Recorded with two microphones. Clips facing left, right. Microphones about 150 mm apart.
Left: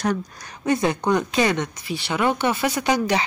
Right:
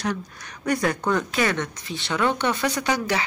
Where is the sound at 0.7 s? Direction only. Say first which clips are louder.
Left 3 dB; 20° left (ahead or behind).